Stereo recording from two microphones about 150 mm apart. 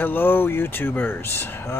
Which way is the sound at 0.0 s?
10° left (ahead or behind).